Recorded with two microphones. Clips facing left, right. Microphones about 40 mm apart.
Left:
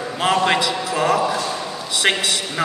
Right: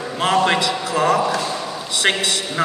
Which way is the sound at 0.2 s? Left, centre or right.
Centre.